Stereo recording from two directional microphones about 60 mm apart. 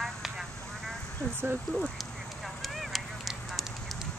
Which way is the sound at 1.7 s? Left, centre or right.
Centre.